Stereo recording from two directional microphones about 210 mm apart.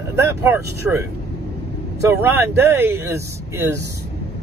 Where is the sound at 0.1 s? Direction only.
10° right (ahead or behind).